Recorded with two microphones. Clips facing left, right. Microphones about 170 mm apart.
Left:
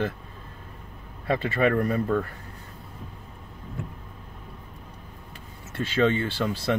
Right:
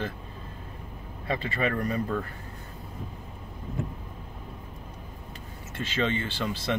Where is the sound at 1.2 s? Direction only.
50° left (ahead or behind).